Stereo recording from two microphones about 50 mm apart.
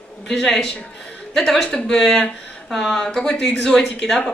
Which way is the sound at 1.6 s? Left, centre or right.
Left.